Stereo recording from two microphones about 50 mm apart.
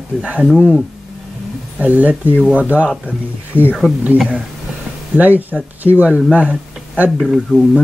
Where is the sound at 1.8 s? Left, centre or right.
Right.